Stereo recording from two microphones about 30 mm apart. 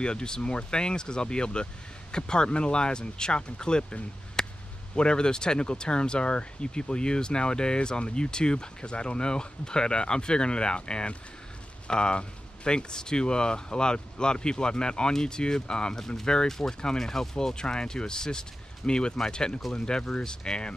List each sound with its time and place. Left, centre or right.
0.0 s speech: left
4.4 s a sound: left
4.9 s speech: left
16.4 s speech: centre
17.6 s speech: left